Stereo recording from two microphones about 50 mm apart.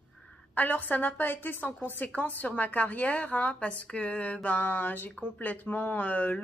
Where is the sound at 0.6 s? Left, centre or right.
Left.